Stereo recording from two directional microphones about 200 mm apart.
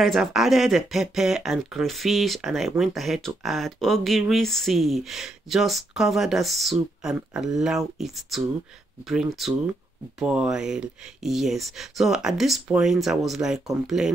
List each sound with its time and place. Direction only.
0.0 s speech: centre (ahead or behind)